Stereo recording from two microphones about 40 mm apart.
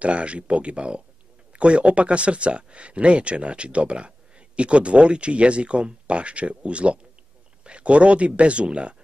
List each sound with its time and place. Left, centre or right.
0.0 s speech: right